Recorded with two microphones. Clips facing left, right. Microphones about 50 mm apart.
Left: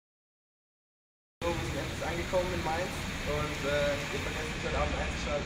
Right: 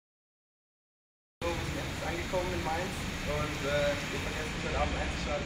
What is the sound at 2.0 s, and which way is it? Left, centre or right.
Speech, centre.